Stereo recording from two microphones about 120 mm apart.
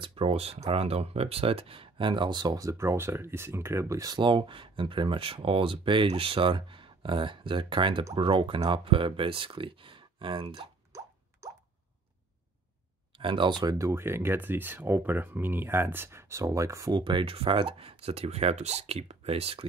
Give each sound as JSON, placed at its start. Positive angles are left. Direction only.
{"t": 0.0, "sound": "speech", "side_deg": -50}
{"t": 10.9, "sound": "plop", "side_deg": -25}
{"t": 11.4, "sound": "drip", "side_deg": -25}
{"t": 13.2, "sound": "speech", "side_deg": -45}